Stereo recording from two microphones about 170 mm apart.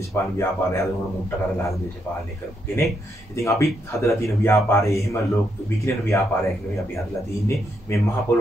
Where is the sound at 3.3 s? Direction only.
15° left (ahead or behind).